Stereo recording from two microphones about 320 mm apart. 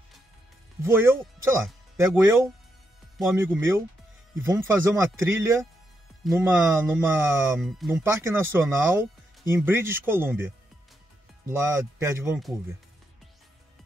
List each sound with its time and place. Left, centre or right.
0.8 s speech: centre
3.2 s speech: centre